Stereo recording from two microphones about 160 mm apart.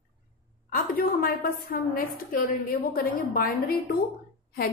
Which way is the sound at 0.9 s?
65° left (ahead or behind).